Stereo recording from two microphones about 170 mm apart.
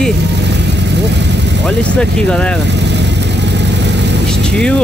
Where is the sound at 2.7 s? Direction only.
90° right.